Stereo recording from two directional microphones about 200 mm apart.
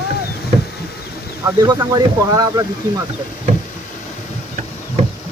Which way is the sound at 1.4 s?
20° right (ahead or behind).